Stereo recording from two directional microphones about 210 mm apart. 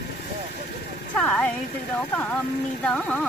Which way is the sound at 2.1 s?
10° left (ahead or behind).